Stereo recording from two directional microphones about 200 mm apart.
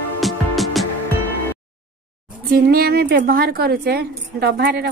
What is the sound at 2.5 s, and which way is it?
A woman's voice, 50° right (ahead or behind).